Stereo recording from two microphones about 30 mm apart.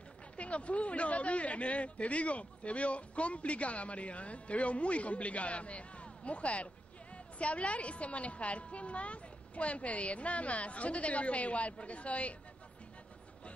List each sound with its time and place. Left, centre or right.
0.4 s speech: left